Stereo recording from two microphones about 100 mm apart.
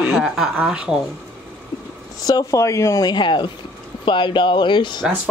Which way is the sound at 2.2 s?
35° left (ahead or behind).